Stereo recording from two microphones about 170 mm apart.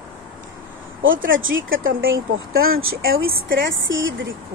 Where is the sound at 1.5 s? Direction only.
90° right.